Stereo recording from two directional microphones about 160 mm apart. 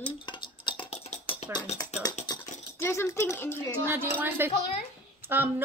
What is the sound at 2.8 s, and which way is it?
Speech, 15° left (ahead or behind).